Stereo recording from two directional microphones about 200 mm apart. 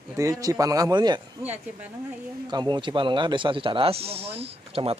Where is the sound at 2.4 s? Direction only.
20° right (ahead or behind).